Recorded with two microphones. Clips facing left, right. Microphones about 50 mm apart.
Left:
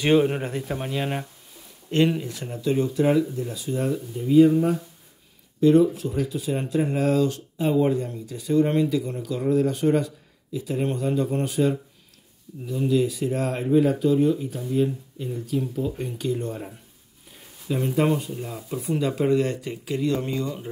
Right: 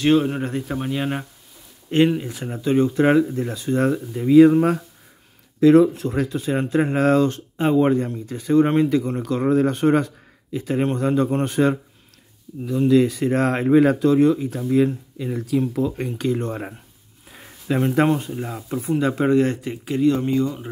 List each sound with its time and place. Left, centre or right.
0.0 s speech: centre
2.1 s speech: right
2.7 s speech: right
5.6 s speech: right
6.3 s speech: right
12.6 s speech: right
17.3 s a sound: right
17.7 s speech: right
18.1 s speech: right